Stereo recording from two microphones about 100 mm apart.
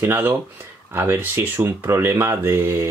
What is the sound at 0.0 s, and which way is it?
Speech, 20° right (ahead or behind).